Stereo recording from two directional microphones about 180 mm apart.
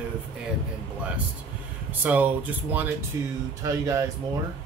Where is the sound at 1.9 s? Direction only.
10° right (ahead or behind).